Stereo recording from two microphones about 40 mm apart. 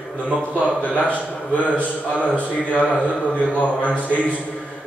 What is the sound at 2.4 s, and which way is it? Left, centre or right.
Speech, left.